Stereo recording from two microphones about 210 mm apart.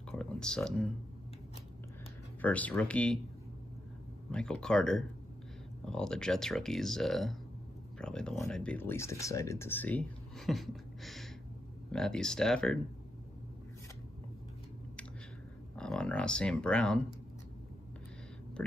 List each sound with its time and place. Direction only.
0.1 s a sound: 5° left (ahead or behind)
2.4 s speech: 5° left (ahead or behind)
4.3 s speech: 5° left (ahead or behind)
15.7 s speech: 5° left (ahead or behind)